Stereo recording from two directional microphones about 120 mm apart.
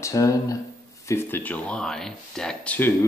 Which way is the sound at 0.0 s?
25° left (ahead or behind).